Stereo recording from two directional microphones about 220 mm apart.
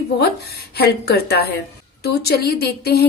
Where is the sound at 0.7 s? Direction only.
45° left (ahead or behind).